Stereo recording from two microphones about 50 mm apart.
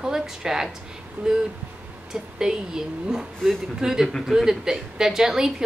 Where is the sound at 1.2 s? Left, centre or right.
Right.